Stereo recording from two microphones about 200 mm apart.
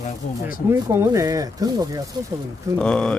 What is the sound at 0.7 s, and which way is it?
Speech, 15° right (ahead or behind).